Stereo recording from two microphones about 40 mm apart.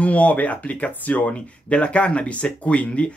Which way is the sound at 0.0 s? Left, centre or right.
Left.